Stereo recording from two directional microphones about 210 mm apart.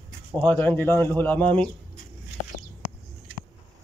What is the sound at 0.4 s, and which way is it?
Speech, 10° left (ahead or behind).